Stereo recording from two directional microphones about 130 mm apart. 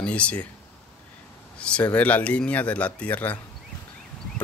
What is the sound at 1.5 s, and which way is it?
Speech, 10° left (ahead or behind).